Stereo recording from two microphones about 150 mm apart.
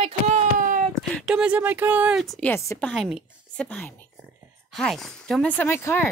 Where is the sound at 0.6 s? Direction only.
60° right (ahead or behind).